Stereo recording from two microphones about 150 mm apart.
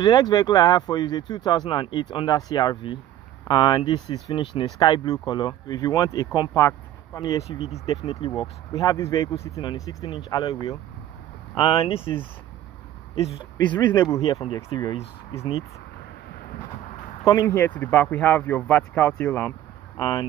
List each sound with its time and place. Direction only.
0.0 s speech: 30° left (ahead or behind)
7.4 s speech: 45° left (ahead or behind)
8.7 s speech: 20° left (ahead or behind)
11.5 s speech: 40° left (ahead or behind)
13.6 s speech: 30° left (ahead or behind)
17.5 s speech: 10° left (ahead or behind)
20.0 s speech: 25° left (ahead or behind)